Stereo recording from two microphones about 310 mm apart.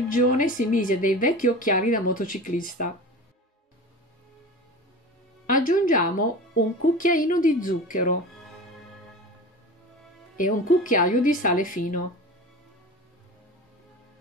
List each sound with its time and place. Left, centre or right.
0.1 s speech: left
5.5 s speech: left
10.3 s speech: left